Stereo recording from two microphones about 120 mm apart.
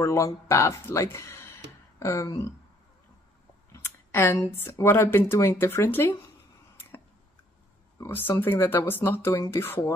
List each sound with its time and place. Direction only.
0.0 s speech: 25° left (ahead or behind)
3.7 s speech: 20° left (ahead or behind)
8.0 s speech: 20° left (ahead or behind)